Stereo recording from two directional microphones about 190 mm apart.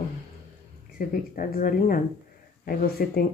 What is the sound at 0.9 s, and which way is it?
Speech, 45° left (ahead or behind).